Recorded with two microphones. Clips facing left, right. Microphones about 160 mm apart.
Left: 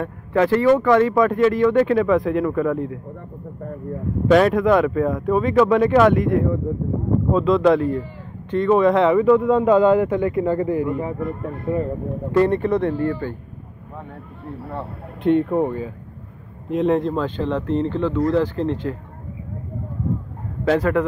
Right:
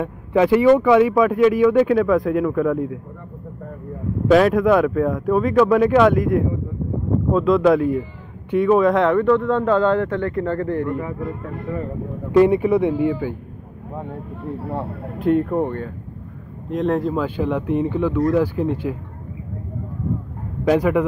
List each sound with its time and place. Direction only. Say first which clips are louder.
0.0 s speech: right 2 dB; 15° right (ahead or behind)
4.3 s speech: right 1 dB; centre (ahead or behind)
11.0 s speech: left 2 dB; 30° left (ahead or behind)
12.3 s speech: right 3 dB; 10° right (ahead or behind)
15.2 s speech: left 1 dB; centre (ahead or behind)
20.6 s speech: right 1 dB; 15° right (ahead or behind)